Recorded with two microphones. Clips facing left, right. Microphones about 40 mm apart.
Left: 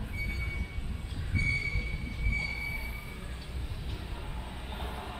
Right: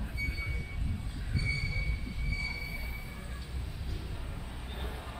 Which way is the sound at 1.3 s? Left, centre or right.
Left.